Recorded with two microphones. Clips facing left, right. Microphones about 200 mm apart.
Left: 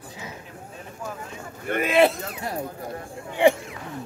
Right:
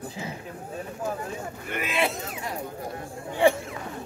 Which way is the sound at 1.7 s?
50° left (ahead or behind).